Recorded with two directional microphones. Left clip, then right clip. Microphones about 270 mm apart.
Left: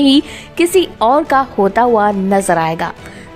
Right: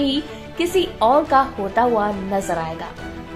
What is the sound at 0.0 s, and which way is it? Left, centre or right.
A woman's voice, left.